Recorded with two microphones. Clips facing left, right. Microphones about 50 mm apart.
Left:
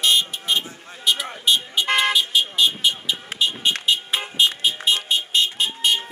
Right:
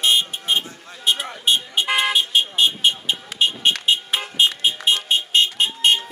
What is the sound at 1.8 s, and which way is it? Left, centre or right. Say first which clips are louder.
Vehicle: left 1 dB; centre.